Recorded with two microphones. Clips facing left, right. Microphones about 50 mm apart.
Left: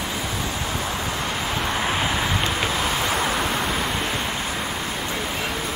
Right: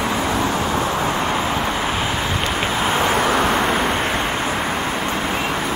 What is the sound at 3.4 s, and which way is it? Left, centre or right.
Vehicle, right.